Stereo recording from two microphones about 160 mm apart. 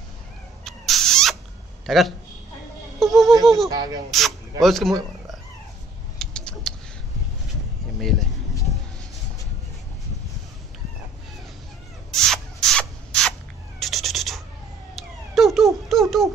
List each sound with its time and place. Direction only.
0.7 s rodents: centre (ahead or behind)
1.9 s speech: centre (ahead or behind)
3.0 s a sound: centre (ahead or behind)
3.4 s speech: centre (ahead or behind)
6.1 s a sound: 5° left (ahead or behind)
8.0 s speech: centre (ahead or behind)
12.1 s spray: 5° left (ahead or behind)
13.7 s cat: centre (ahead or behind)
15.0 s a sound: centre (ahead or behind)